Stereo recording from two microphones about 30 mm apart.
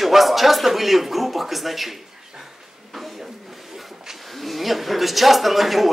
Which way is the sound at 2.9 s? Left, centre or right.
Centre.